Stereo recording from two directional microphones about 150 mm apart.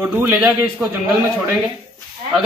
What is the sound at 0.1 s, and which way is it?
Speech, 10° right (ahead or behind).